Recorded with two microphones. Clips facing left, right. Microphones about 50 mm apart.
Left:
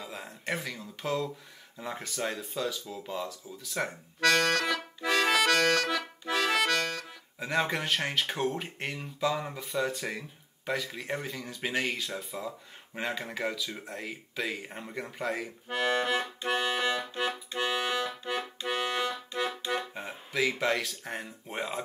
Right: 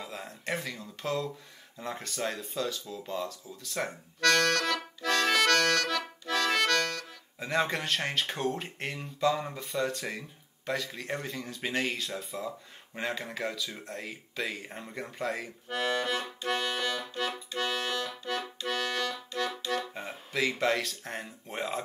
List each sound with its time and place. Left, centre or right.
0.0 s speech: centre
4.3 s accordion: centre
7.3 s speech: centre
15.7 s accordion: left
17.6 s music: centre
18.2 s accordion: centre
19.9 s speech: centre